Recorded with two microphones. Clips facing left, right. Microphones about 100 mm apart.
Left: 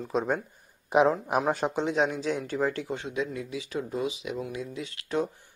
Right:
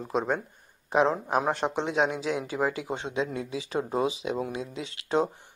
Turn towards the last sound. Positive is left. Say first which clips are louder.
# right 3 dB
turn(degrees=-25)  # may be behind; listen again after turning